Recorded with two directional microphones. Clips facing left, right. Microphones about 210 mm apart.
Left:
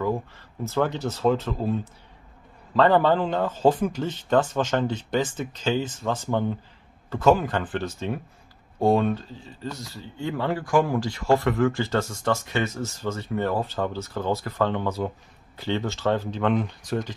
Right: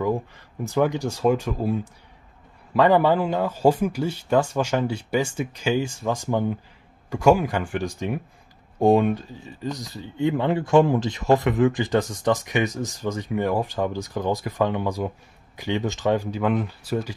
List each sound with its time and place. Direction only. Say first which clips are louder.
0.7 s speech: right 3 dB; 15° right (ahead or behind)